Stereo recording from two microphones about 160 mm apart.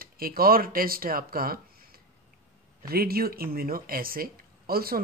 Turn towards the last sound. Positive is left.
turn(degrees=-70)  # may be behind; listen again after turning